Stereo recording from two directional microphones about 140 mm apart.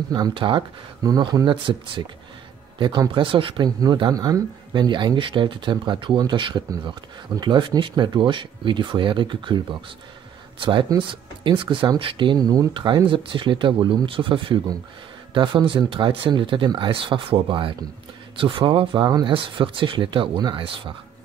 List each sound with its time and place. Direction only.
0.1 s speech: 35° right (ahead or behind)